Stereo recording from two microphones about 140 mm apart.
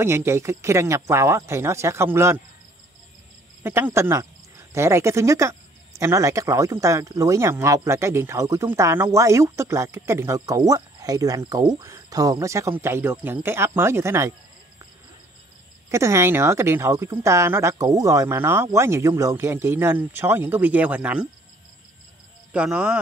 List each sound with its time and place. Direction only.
0.0 s speech: 20° right (ahead or behind)
3.6 s speech: 15° right (ahead or behind)
15.9 s speech: 20° right (ahead or behind)
22.5 s speech: 10° right (ahead or behind)